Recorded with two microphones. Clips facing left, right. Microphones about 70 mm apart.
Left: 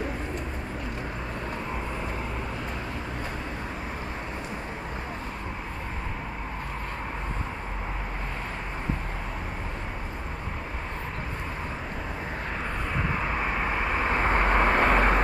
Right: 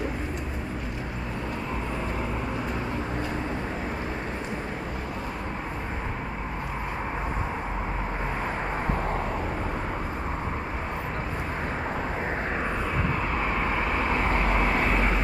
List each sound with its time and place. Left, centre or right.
13.1 s vehicle: centre
14.1 s vehicle: left